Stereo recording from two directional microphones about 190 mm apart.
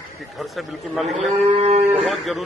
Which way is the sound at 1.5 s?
35° right (ahead or behind).